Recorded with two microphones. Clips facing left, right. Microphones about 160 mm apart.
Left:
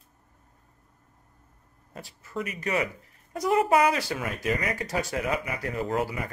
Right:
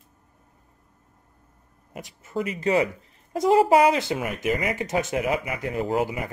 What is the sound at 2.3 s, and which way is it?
Speech, 30° right (ahead or behind).